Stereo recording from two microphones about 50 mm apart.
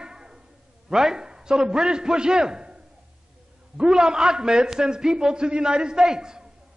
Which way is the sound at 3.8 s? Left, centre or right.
Centre.